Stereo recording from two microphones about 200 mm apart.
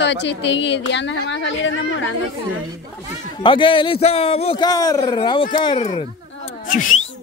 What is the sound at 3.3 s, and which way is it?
A man's voice, 25° left (ahead or behind).